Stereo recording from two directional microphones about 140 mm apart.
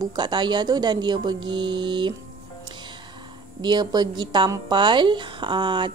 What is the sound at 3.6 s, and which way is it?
Speech, 30° right (ahead or behind).